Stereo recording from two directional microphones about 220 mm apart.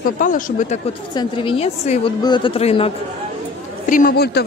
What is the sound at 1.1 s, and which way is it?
A woman's voice, 25° left (ahead or behind).